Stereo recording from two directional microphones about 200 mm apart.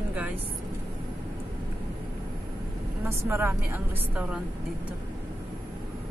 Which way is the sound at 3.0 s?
10° right (ahead or behind).